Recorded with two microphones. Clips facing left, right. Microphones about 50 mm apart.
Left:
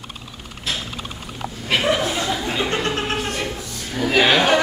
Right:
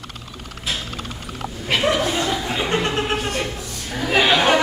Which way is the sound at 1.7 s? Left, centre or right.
Centre.